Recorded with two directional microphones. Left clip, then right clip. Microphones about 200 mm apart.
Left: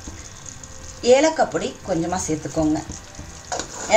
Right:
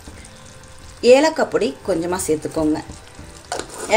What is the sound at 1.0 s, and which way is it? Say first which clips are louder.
Speech: right 3 dB; 40° right (ahead or behind).